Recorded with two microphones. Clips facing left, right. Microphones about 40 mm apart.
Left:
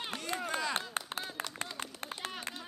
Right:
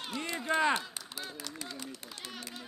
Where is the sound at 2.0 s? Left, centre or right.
Left.